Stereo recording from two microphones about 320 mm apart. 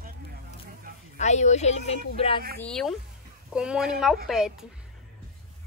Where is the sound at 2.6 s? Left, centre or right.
Centre.